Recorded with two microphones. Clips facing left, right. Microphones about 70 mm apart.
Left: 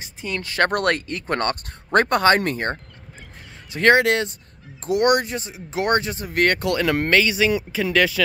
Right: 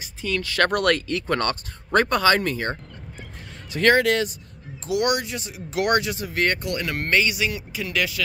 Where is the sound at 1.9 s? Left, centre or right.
Left.